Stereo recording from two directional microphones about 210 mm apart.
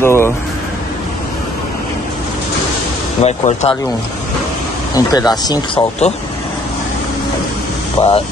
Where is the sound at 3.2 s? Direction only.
30° left (ahead or behind).